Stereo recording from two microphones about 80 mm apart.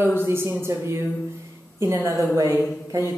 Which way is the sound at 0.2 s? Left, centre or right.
Right.